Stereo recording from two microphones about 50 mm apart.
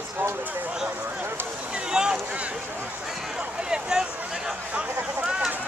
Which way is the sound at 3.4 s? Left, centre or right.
Centre.